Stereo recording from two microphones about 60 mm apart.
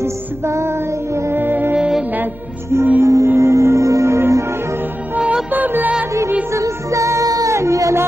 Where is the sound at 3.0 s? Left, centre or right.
Right.